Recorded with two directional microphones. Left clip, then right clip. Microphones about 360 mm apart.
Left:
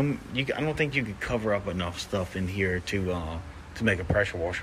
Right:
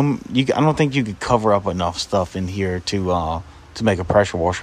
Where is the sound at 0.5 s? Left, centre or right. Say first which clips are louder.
Right 13 dB; right.